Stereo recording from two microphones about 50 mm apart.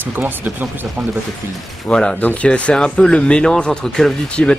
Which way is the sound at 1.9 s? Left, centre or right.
Centre.